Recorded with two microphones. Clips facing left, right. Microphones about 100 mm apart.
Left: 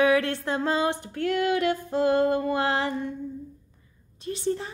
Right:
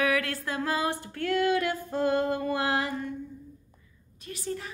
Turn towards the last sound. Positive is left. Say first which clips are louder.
# left 7 dB
turn(degrees=30)  # may be behind; listen again after turning